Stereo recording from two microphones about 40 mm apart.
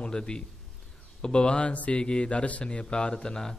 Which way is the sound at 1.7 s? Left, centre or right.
Left.